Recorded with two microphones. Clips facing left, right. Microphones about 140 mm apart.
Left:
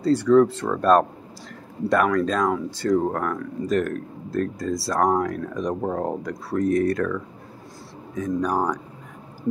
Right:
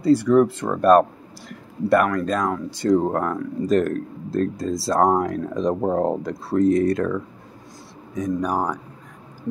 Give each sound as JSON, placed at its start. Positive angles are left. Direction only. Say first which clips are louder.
{"t": 0.0, "sound": "speech", "louder": "right 1 dB", "side_deg": -10}
{"t": 2.7, "sound": "speech", "louder": "right 3 dB", "side_deg": -20}